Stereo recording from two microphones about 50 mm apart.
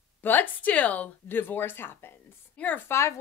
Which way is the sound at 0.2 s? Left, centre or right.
Left.